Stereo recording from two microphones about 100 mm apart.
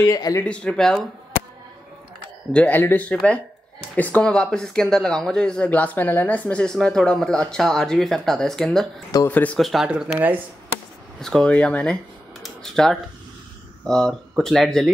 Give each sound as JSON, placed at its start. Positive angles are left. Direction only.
{"t": 0.0, "sound": "speech", "side_deg": 35}
{"t": 0.4, "sound": "speech", "side_deg": 10}
{"t": 2.5, "sound": "speech", "side_deg": 15}
{"t": 9.3, "sound": "speech", "side_deg": 15}
{"t": 9.6, "sound": "speech", "side_deg": 0}
{"t": 10.1, "sound": "speech", "side_deg": -20}
{"t": 11.1, "sound": "speech", "side_deg": 5}
{"t": 12.4, "sound": "a sound", "side_deg": 5}
{"t": 13.8, "sound": "speech", "side_deg": 5}